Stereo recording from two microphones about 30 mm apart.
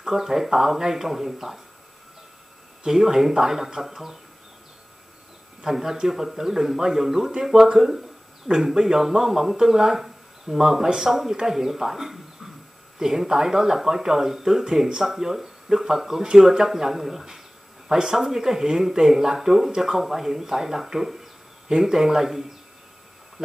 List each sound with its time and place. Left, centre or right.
0.0 s speech: centre
2.9 s speech: centre
5.6 s speech: centre
17.9 s speech: right
18.2 s speech: centre